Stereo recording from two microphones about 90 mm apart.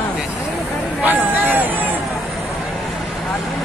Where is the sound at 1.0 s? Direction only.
20° right (ahead or behind).